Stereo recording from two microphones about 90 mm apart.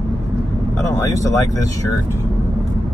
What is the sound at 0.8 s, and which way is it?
Speech, 35° left (ahead or behind).